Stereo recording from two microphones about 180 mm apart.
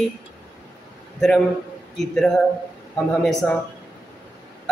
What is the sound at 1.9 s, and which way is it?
Speech, centre (ahead or behind).